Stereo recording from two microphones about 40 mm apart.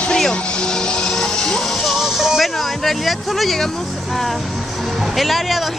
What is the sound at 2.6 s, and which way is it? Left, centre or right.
Speech, centre.